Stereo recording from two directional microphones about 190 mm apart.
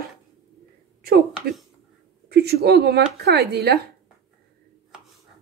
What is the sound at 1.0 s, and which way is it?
Speech, 55° right (ahead or behind).